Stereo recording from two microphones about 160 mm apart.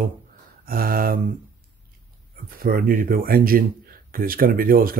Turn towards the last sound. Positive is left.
turn(degrees=-65)  # may be behind; listen again after turning